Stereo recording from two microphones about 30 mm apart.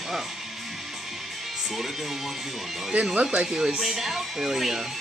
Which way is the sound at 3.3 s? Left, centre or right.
Right.